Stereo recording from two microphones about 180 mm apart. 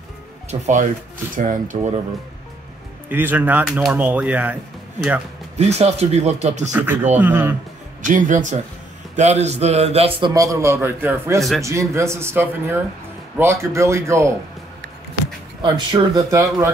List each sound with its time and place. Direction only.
0.5 s a man's voice: 40° right (ahead or behind)
3.1 s speech: 10° right (ahead or behind)
5.6 s a man's voice: 35° right (ahead or behind)
6.7 s speech: 10° right (ahead or behind)
8.0 s a man's voice: 45° right (ahead or behind)
10.3 s speech: 20° right (ahead or behind)
15.6 s speech: 25° right (ahead or behind)